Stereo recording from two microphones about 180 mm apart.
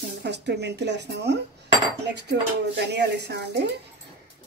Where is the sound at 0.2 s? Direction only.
70° right (ahead or behind).